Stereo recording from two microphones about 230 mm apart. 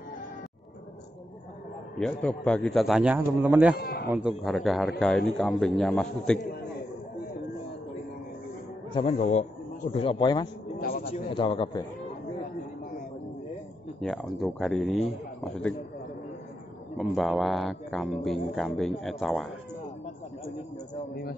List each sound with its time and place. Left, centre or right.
2.0 s speech: centre
3.7 s a man's voice: left
4.1 s speech: centre
8.9 s a man's voice: left
10.8 s a sound: left
11.1 s a man's voice: left
13.9 s speech: centre
16.9 s speech: centre
21.1 s a man's voice: left